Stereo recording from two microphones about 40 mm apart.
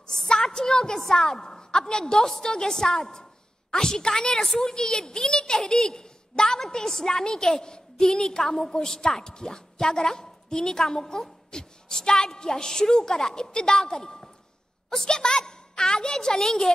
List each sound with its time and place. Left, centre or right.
0.3 s a woman's voice: centre